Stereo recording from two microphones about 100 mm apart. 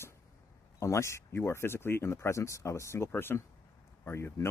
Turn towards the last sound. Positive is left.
turn(degrees=25)  # may be behind; listen again after turning